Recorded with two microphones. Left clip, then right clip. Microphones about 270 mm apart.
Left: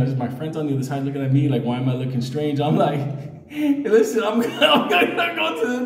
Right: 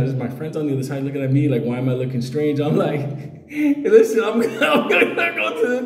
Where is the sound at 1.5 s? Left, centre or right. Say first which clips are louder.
Right 2 dB; centre.